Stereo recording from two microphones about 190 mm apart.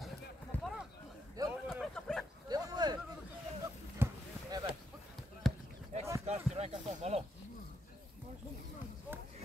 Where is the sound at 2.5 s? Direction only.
20° right (ahead or behind).